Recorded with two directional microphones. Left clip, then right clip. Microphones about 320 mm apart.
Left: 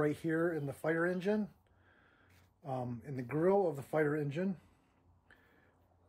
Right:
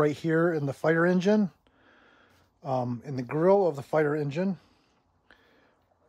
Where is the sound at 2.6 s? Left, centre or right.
Centre.